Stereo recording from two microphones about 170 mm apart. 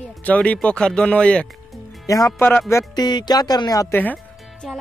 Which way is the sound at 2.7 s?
25° left (ahead or behind).